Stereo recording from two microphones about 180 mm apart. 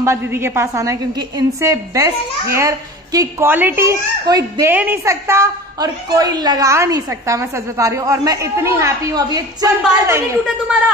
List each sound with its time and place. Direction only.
0.0 s a child's voice: 15° right (ahead or behind)